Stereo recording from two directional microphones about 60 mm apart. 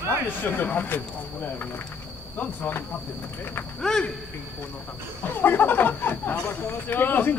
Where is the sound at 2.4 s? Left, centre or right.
Left.